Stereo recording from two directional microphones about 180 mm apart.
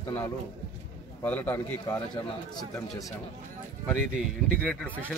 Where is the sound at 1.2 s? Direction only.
10° left (ahead or behind).